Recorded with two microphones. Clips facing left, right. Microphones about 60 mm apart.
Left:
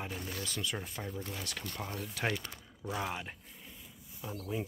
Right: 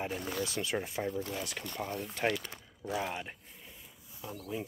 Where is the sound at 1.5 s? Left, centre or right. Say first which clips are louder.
Right 3 dB; centre.